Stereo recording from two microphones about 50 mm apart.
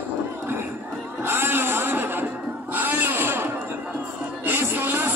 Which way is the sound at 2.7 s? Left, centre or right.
Right.